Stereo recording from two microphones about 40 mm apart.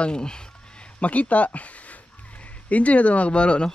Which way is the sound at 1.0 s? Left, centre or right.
Left.